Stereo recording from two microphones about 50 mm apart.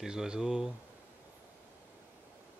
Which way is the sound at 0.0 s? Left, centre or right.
Centre.